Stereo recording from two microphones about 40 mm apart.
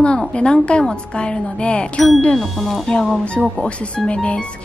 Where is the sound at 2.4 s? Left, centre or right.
Centre.